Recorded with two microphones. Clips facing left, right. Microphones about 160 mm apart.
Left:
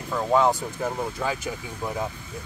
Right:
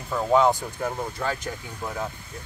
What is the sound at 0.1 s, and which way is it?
Speech, centre (ahead or behind).